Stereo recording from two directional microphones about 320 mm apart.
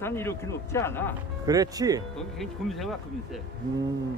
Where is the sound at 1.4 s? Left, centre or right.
Centre.